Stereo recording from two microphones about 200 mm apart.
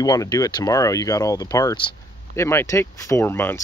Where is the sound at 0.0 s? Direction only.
20° left (ahead or behind).